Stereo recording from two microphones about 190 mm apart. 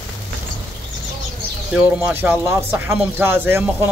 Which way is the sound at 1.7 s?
10° right (ahead or behind).